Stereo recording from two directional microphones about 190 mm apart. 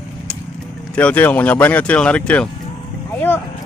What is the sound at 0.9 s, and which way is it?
Speech, 10° left (ahead or behind).